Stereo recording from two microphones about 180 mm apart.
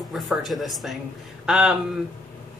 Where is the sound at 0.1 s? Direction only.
Centre (ahead or behind).